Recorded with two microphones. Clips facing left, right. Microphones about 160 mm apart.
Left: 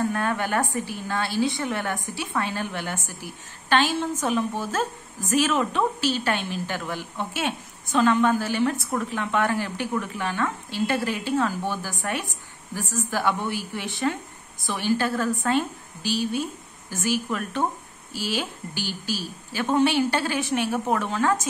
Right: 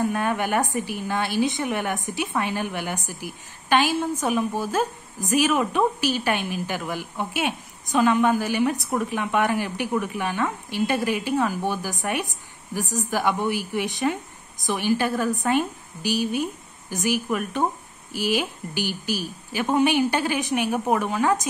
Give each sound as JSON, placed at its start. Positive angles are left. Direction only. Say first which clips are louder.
{"t": 0.0, "sound": "a woman's voice", "louder": "right 1 dB", "side_deg": -15}